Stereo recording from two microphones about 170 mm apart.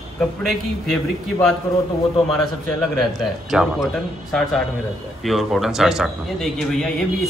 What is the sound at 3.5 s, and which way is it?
A man's voice, 5° right (ahead or behind).